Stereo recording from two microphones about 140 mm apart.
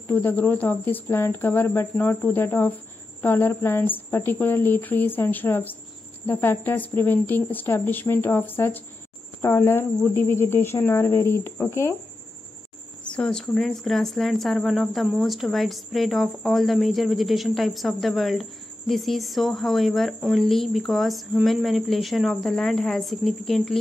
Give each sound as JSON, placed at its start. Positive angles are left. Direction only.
{"t": 0.1, "sound": "speech", "side_deg": 10}
{"t": 13.1, "sound": "speech", "side_deg": 5}